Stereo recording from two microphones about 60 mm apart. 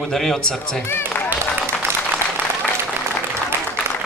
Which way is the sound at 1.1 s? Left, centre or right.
Left.